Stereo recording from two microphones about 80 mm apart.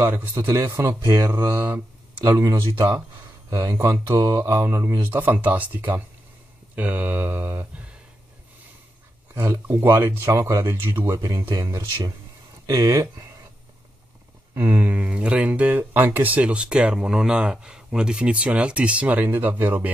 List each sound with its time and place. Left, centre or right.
0.0 s speech: right
2.2 s speech: right
5.1 s speech: right
9.3 s speech: right
11.3 s speech: right
12.6 s speech: right
14.5 s a sound: right
14.8 s speech: centre